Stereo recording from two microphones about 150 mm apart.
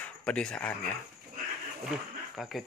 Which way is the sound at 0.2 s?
5° left (ahead or behind).